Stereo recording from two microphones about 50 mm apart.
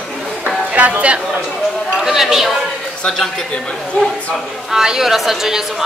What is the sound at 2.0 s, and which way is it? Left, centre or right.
Speech, centre.